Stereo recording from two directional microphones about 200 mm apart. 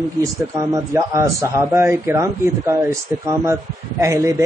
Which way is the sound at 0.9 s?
15° right (ahead or behind).